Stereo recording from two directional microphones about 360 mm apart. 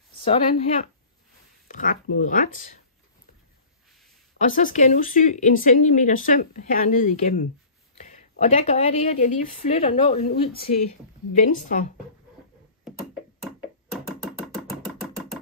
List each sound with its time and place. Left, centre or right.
0.2 s speech: centre
4.4 s speech: left